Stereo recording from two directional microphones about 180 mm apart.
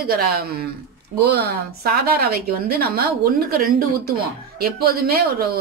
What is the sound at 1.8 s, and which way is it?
A woman's voice, 60° right (ahead or behind).